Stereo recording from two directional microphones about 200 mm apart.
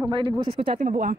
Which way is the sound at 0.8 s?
40° right (ahead or behind).